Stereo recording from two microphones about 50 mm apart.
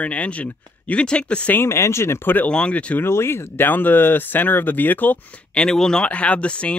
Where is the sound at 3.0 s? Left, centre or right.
Left.